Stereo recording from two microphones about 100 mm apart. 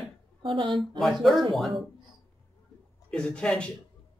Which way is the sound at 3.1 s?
5° left (ahead or behind).